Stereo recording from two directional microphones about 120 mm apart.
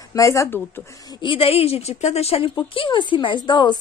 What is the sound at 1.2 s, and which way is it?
A woman's voice, 50° left (ahead or behind).